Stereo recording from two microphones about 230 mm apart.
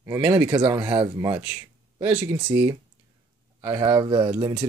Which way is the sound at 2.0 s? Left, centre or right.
Centre.